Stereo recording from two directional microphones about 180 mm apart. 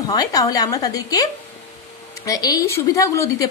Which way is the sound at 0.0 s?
20° left (ahead or behind).